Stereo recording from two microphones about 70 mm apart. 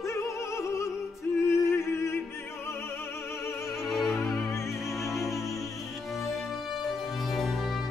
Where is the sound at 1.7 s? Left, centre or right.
Left.